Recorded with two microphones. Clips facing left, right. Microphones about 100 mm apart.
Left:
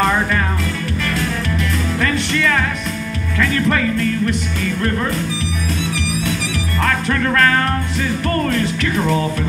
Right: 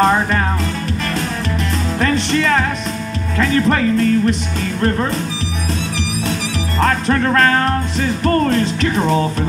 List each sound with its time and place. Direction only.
0.0 s music: 35° right (ahead or behind)
2.0 s music: 30° right (ahead or behind)
6.8 s music: 30° right (ahead or behind)